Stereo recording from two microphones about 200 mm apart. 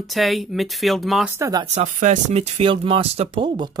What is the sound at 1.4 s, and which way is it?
Speech, 20° right (ahead or behind).